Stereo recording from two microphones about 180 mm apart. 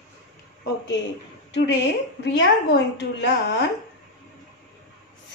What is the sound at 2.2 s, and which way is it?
A woman's voice, 75° left (ahead or behind).